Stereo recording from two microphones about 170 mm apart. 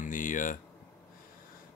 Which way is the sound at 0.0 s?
50° left (ahead or behind).